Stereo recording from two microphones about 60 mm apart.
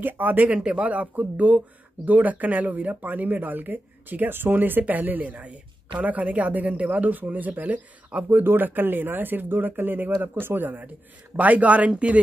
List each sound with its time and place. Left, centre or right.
0.0 s speech: right
0.5 s speech: centre
8.3 s speech: right